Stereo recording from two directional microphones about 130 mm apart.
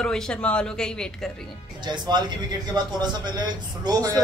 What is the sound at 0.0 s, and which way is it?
Speech, 5° left (ahead or behind).